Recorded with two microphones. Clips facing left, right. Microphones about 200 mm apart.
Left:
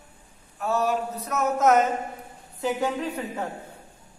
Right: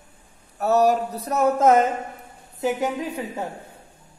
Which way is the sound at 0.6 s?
40° right (ahead or behind).